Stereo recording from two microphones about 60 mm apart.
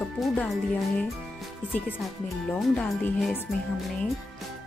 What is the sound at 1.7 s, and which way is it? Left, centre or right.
Speech, left.